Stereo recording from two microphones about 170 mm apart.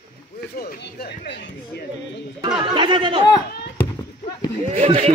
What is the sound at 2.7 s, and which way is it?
Speech, 30° right (ahead or behind).